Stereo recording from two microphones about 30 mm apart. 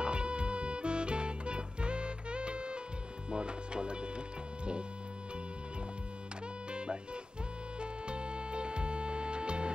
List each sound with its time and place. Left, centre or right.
0.0 s music: right
6.7 s music: right